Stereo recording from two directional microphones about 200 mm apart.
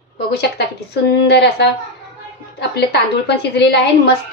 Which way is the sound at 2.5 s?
55° left (ahead or behind).